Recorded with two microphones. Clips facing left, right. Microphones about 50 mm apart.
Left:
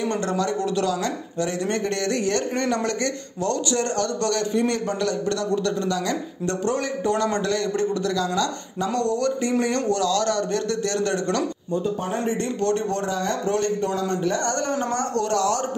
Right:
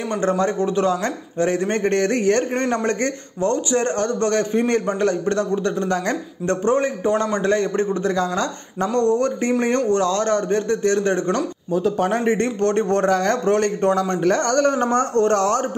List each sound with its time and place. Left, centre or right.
0.1 s a man's voice: right
11.7 s speech: right
12.2 s a man's voice: right